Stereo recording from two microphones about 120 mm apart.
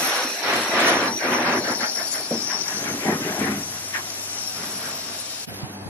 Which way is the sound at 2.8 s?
15° left (ahead or behind).